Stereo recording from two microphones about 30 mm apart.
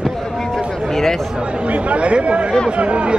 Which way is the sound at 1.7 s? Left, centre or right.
Right.